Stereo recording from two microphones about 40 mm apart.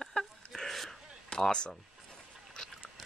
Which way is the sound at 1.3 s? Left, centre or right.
Left.